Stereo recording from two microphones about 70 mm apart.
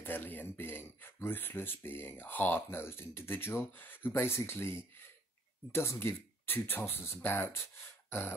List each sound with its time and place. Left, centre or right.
0.0 s speech: left